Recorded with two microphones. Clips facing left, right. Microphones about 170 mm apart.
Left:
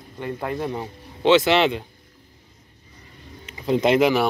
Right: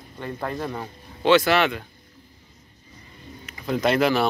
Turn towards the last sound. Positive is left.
turn(degrees=15)  # may be behind; listen again after turning